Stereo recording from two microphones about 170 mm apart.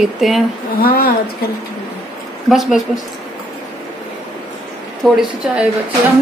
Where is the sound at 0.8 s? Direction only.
60° left (ahead or behind).